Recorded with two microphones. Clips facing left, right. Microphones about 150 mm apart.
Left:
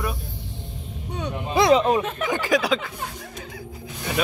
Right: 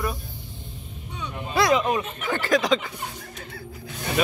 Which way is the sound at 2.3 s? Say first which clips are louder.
Right 1 dB; 10° left (ahead or behind).